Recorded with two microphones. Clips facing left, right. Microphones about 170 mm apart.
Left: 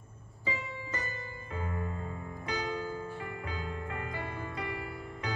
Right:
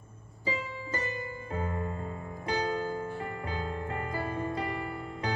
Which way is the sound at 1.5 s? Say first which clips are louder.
Right 3 dB; 35° right (ahead or behind).